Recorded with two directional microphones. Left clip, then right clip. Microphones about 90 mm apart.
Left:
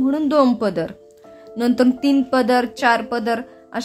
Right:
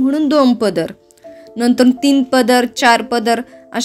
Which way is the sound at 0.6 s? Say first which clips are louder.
Right 5 dB; 30° right (ahead or behind).